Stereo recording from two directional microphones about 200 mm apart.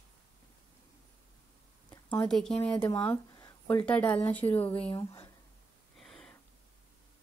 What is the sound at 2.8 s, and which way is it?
Speech, 15° left (ahead or behind).